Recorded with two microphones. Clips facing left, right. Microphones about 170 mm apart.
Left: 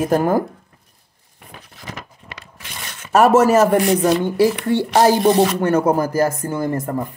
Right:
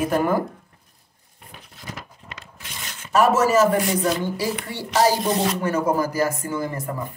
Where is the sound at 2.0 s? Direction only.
70° left (ahead or behind).